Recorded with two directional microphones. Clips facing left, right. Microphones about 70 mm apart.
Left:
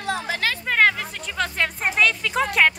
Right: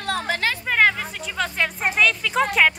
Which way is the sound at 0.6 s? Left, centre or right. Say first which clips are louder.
Even; centre.